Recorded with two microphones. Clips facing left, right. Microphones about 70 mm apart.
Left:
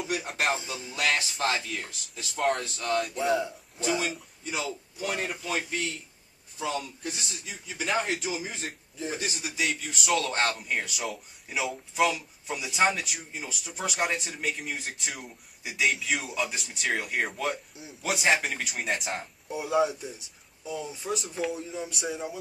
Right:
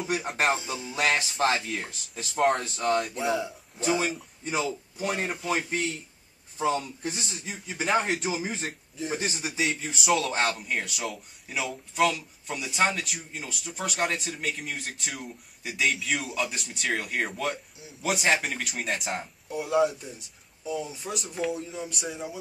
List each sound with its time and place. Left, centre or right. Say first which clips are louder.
0.1 s speech: right 3 dB; right
3.2 s speech: left 1 dB; centre
4.9 s a man's voice: right 1 dB; right
10.1 s speech: even; centre